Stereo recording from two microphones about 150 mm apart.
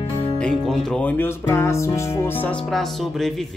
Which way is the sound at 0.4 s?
5° left (ahead or behind).